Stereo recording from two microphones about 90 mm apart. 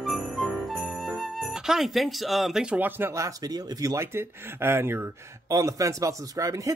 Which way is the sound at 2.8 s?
25° right (ahead or behind).